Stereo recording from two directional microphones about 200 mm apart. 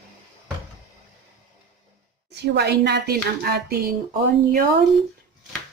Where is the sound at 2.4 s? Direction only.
55° right (ahead or behind).